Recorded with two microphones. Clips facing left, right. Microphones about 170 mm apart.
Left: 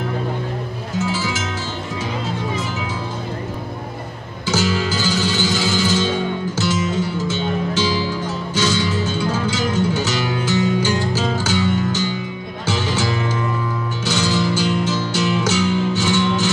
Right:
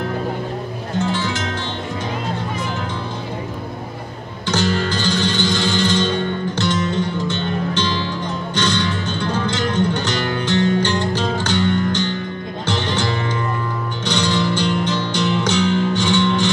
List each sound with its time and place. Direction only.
0.9 s music: 5° left (ahead or behind)
4.5 s music: 5° left (ahead or behind)